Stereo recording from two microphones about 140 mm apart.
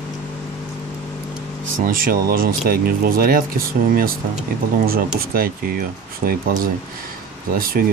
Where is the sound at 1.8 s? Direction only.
90° right.